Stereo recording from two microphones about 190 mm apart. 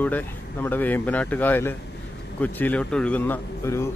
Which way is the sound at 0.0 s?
10° left (ahead or behind).